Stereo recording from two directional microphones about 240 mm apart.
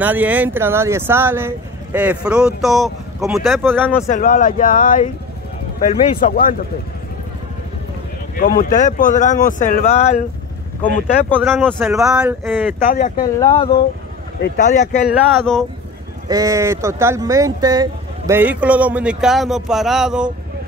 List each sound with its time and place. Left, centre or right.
0.0 s speech: centre
4.1 s speech: left
8.4 s speech: left
11.5 s speech: centre
12.8 s speech: left
13.4 s speech: centre
14.4 s speech: left
15.0 s speech: centre
16.3 s speech: centre